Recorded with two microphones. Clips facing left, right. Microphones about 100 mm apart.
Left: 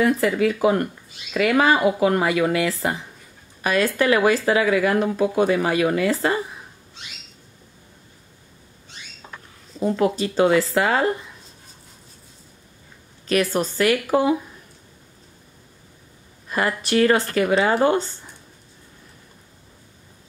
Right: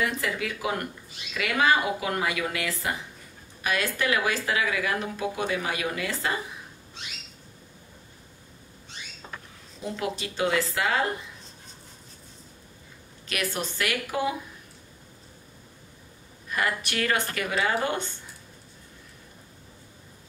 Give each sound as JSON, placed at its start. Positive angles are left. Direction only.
{"t": 0.0, "sound": "speech", "side_deg": 35}
{"t": 9.8, "sound": "speech", "side_deg": 40}
{"t": 13.3, "sound": "speech", "side_deg": 40}
{"t": 16.4, "sound": "speech", "side_deg": 30}